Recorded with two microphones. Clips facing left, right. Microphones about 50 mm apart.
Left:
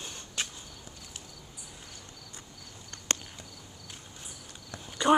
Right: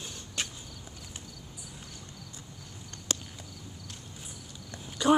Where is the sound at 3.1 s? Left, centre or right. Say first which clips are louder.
Left 2 dB; left.